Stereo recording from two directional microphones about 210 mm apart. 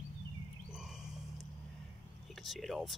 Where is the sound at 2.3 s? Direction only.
Centre (ahead or behind).